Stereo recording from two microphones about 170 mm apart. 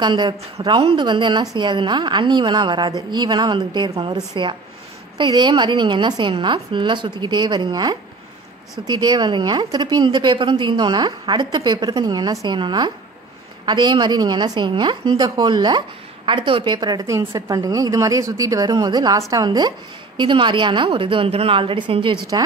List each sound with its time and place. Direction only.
0.0 s a woman's voice: 25° right (ahead or behind)